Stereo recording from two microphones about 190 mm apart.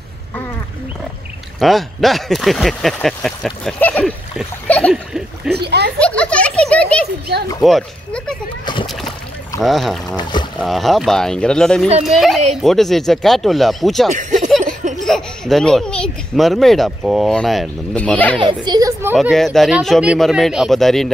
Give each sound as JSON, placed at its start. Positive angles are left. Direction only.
{"t": 1.6, "sound": "speech", "side_deg": 0}
{"t": 5.5, "sound": "speech", "side_deg": -60}
{"t": 5.9, "sound": "a child's voice", "side_deg": 5}
{"t": 7.3, "sound": "speech", "side_deg": -60}
{"t": 7.6, "sound": "speech", "side_deg": 0}
{"t": 9.6, "sound": "speech", "side_deg": 0}
{"t": 18.4, "sound": "a woman's voice", "side_deg": -25}
{"t": 19.1, "sound": "speech", "side_deg": 0}